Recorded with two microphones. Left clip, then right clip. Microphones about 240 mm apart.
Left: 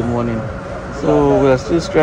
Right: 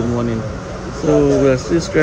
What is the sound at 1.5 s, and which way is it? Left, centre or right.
Speech, centre.